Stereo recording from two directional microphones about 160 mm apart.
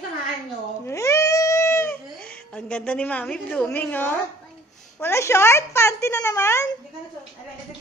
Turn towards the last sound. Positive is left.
turn(degrees=15)  # may be behind; listen again after turning